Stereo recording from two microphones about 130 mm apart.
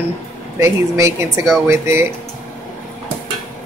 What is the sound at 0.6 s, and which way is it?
Speech, 25° right (ahead or behind).